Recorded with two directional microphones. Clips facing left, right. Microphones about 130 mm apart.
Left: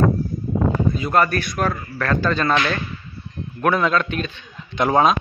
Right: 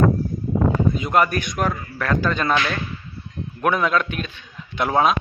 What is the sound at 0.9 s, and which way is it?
A man's voice, 15° right (ahead or behind).